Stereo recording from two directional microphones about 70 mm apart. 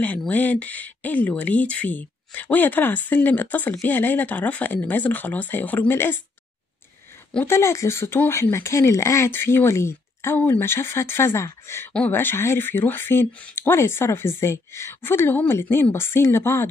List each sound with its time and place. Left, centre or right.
0.3 s speech: left
7.4 s speech: left